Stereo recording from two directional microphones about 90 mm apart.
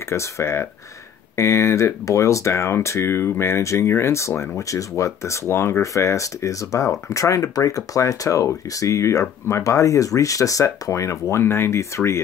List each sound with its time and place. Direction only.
0.1 s speech: 30° left (ahead or behind)